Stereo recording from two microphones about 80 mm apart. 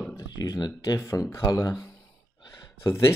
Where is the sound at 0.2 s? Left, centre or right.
Left.